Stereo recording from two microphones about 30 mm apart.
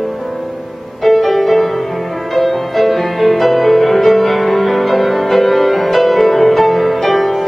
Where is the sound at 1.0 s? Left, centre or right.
Centre.